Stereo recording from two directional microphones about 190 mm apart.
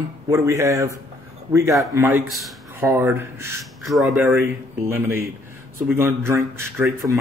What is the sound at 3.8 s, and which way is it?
Speech, centre (ahead or behind).